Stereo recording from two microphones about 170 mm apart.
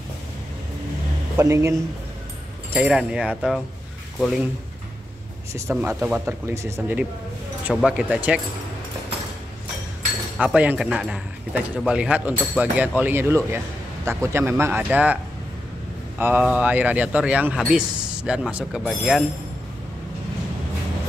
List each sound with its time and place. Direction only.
1.3 s a man's voice: 15° right (ahead or behind)
2.7 s speech: 5° right (ahead or behind)
5.5 s a man's voice: 15° right (ahead or behind)
10.3 s a man's voice: 5° right (ahead or behind)
16.2 s a man's voice: 10° right (ahead or behind)